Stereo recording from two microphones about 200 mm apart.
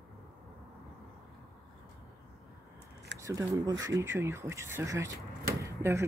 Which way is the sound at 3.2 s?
15° right (ahead or behind).